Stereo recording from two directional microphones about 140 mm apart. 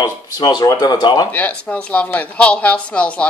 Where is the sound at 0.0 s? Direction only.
30° left (ahead or behind).